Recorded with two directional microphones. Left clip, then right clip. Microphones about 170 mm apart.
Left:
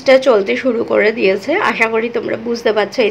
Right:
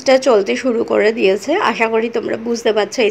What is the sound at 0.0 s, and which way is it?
Speech, 20° right (ahead or behind).